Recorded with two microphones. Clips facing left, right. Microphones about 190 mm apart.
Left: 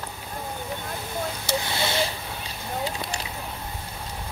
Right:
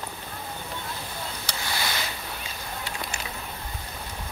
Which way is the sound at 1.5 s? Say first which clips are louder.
Left 5 dB; 25° left (ahead or behind).